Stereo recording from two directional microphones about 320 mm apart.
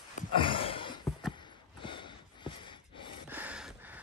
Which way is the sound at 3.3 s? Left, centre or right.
Centre.